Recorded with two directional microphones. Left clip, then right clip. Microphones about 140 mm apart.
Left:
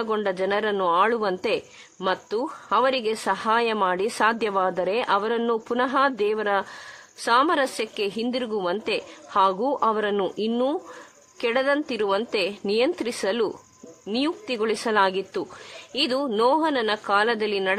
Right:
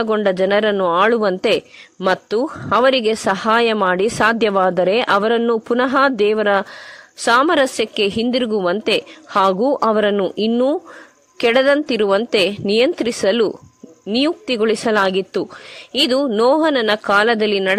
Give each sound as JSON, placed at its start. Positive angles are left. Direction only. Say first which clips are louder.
{"t": 0.0, "sound": "a woman's voice", "louder": "right 8 dB", "side_deg": -40}
{"t": 10.5, "sound": "speech", "louder": "right 8 dB", "side_deg": -25}
{"t": 11.3, "sound": "a woman's voice", "louder": "right 9 dB", "side_deg": -45}